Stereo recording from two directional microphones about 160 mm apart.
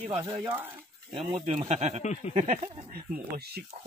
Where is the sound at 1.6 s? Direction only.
45° right (ahead or behind).